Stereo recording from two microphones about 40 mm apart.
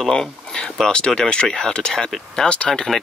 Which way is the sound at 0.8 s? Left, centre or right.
Left.